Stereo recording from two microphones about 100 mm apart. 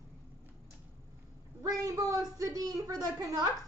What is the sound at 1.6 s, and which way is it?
A woman's voice, 35° right (ahead or behind).